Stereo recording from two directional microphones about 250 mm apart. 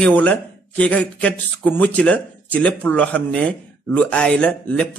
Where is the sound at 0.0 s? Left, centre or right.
Centre.